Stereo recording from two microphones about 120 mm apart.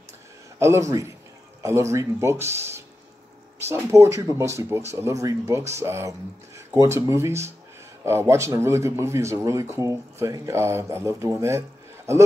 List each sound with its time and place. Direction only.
0.6 s speech: 25° right (ahead or behind)